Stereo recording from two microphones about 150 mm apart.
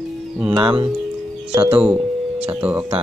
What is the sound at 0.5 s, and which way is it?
Speech, 35° right (ahead or behind).